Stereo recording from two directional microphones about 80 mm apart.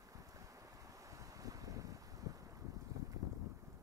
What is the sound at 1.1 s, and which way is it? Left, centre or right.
Wind, right.